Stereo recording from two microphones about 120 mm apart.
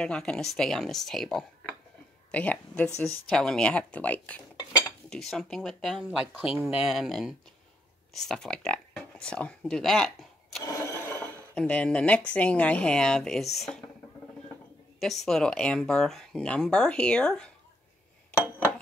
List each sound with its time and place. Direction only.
0.0 s speech: 5° left (ahead or behind)
5.1 s speech: centre (ahead or behind)
6.5 s speech: 50° left (ahead or behind)
6.9 s speech: centre (ahead or behind)
10.6 s a sound: 25° left (ahead or behind)
11.5 s speech: 10° left (ahead or behind)
15.0 s speech: centre (ahead or behind)